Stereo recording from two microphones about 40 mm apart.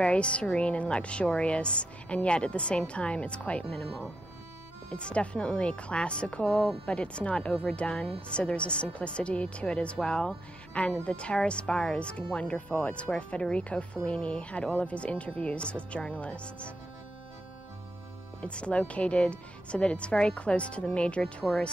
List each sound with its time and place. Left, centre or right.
0.0 s a woman's voice: left
4.9 s a woman's voice: left
18.4 s a woman's voice: left
21.5 s speech: centre